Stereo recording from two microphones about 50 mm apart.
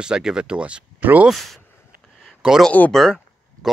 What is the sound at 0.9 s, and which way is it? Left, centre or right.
Speech, right.